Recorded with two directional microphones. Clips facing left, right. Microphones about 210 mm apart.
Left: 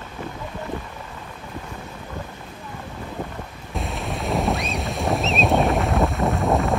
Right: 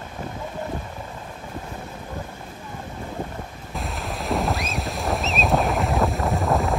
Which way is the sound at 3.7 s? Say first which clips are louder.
Left 2 dB; centre (ahead or behind).